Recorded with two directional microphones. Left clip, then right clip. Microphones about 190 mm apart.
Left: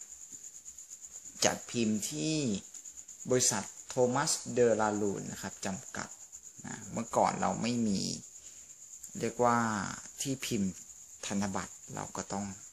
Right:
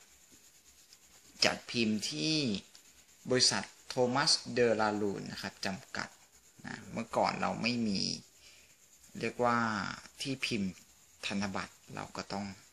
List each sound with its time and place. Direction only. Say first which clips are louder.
1.4 s speech: even; 10° left (ahead or behind)
9.2 s speech: left 2 dB; 15° left (ahead or behind)